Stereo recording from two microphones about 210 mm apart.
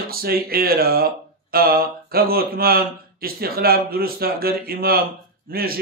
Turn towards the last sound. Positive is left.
turn(degrees=-45)  # may be behind; listen again after turning